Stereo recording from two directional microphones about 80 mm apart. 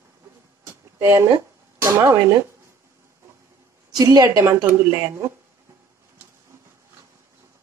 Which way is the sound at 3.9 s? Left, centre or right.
Right.